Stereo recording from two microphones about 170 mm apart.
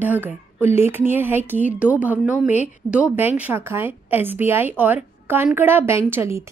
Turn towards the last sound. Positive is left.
turn(degrees=-15)  # may be behind; listen again after turning